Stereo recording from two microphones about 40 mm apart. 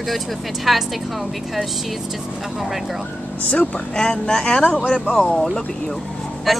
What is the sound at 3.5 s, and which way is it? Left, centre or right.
Speech, left.